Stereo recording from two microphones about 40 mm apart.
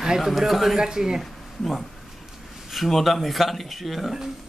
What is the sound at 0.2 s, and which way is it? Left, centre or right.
Speech, centre.